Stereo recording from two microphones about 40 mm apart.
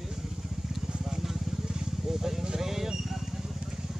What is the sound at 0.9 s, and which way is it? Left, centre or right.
Vehicle, centre.